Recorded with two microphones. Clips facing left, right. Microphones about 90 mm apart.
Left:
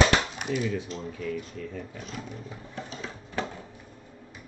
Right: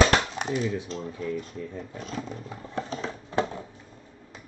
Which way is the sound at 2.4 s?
50° right (ahead or behind).